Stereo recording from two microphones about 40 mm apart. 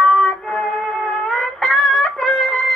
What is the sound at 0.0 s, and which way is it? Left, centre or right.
Music, left.